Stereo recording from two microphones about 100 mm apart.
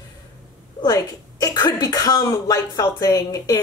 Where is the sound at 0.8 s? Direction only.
40° left (ahead or behind).